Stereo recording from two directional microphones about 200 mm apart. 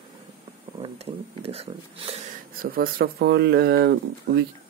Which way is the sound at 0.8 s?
30° right (ahead or behind).